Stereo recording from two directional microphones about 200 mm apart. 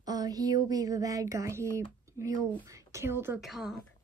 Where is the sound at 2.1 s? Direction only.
15° right (ahead or behind).